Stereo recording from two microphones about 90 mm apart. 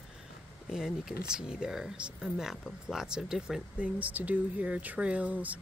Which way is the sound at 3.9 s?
20° right (ahead or behind).